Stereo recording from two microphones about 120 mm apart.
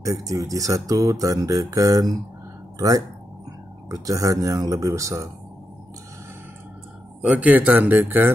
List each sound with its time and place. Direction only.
0.0 s speech: 30° right (ahead or behind)
3.9 s speech: 30° right (ahead or behind)
7.2 s speech: 10° right (ahead or behind)